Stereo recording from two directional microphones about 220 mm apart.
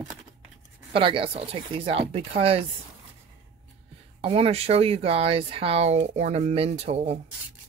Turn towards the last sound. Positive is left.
turn(degrees=-30)  # may be behind; listen again after turning